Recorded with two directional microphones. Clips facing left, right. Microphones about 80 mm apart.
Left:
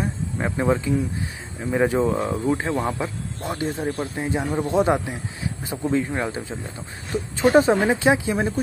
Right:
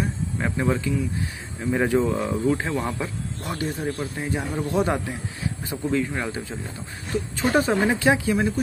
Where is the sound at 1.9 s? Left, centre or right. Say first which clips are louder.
Left 1 dB; left.